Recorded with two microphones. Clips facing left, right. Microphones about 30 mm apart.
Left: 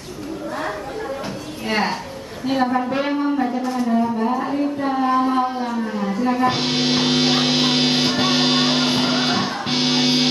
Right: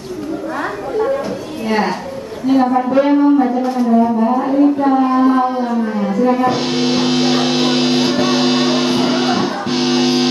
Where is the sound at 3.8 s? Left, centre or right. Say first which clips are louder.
Right 7 dB; centre.